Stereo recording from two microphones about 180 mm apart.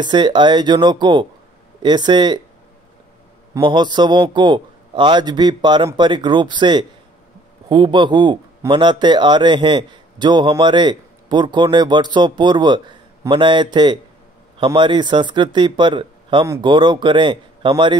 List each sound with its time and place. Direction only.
0.0 s a man's voice: 25° right (ahead or behind)
3.5 s a man's voice: 25° right (ahead or behind)